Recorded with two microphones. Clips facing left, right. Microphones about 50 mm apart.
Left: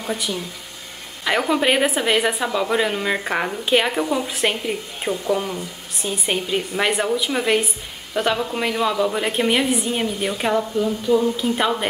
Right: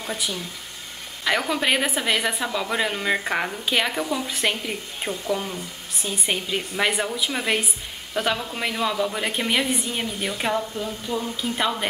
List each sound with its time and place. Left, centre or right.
0.0 s a woman's voice: centre
11.1 s speech: centre
11.5 s a woman's voice: centre